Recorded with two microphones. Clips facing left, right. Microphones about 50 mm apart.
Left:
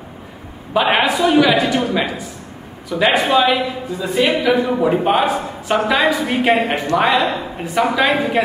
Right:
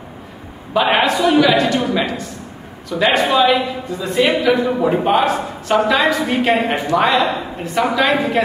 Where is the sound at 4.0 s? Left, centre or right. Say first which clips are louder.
Right 1 dB; centre.